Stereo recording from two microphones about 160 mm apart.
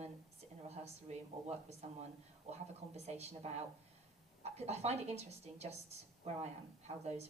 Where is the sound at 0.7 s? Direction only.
40° right (ahead or behind).